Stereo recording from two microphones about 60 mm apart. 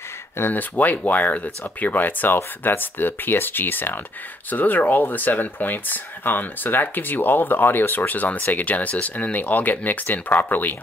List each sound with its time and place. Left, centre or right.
0.4 s speech: left